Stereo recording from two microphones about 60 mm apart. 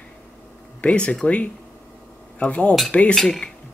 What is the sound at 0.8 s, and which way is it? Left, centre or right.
Speech, left.